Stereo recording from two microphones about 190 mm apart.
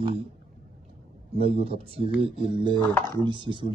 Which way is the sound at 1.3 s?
30° right (ahead or behind).